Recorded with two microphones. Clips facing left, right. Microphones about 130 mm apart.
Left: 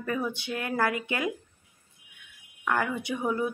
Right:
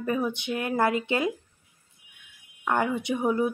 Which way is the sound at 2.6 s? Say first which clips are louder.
Right 3 dB; 20° right (ahead or behind).